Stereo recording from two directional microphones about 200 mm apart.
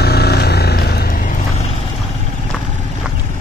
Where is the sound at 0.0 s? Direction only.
50° left (ahead or behind); by 1.8 s 30° left (ahead or behind).